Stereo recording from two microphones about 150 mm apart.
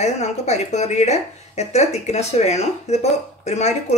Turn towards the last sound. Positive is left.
turn(degrees=50)  # may be behind; listen again after turning